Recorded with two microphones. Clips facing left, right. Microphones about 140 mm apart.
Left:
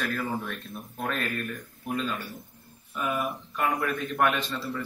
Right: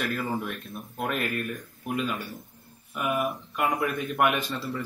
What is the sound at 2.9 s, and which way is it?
A man's voice, 15° right (ahead or behind).